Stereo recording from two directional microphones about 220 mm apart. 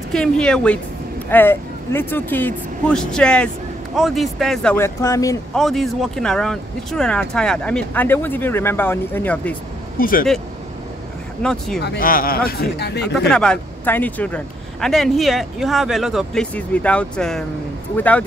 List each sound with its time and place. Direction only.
0.1 s speech: 5° left (ahead or behind)
5.5 s speech: centre (ahead or behind)
9.9 s speech: 40° left (ahead or behind)
11.4 s speech: centre (ahead or behind)
11.8 s speech: 45° left (ahead or behind)
13.3 s speech: 5° left (ahead or behind)